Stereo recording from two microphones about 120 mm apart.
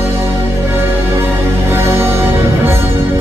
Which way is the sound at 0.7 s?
20° right (ahead or behind).